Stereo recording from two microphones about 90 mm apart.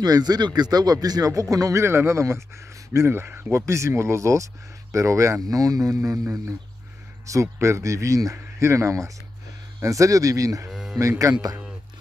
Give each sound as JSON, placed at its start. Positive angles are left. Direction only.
{"t": 0.0, "sound": "speech", "side_deg": -45}
{"t": 10.7, "sound": "music", "side_deg": -5}
{"t": 11.0, "sound": "speech", "side_deg": -40}